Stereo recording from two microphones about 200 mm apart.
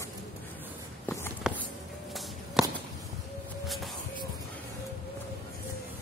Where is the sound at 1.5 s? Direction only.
5° right (ahead or behind).